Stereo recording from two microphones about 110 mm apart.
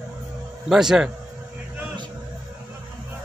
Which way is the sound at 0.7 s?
5° right (ahead or behind).